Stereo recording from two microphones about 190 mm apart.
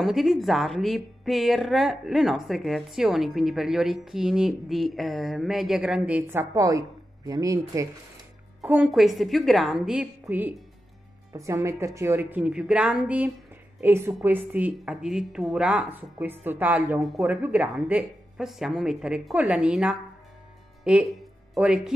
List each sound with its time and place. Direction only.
0.0 s a woman's voice: centre (ahead or behind); by 7.9 s 15° right (ahead or behind)
8.5 s a woman's voice: 5° right (ahead or behind)